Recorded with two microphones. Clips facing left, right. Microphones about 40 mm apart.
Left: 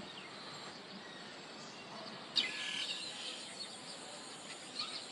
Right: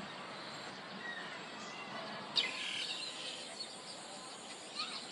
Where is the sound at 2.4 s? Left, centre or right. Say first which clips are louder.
Even; centre.